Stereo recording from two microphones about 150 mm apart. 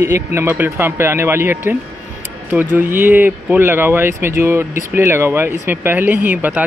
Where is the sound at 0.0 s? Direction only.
15° right (ahead or behind).